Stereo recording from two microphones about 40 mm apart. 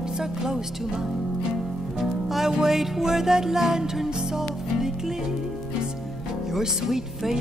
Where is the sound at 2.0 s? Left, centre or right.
Centre.